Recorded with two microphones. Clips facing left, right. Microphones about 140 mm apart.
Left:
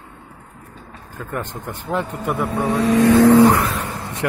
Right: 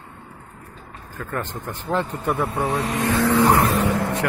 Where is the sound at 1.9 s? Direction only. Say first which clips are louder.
Even; 10° left (ahead or behind).